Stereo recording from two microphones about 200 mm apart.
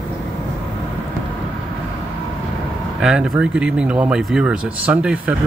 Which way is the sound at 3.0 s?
5° right (ahead or behind).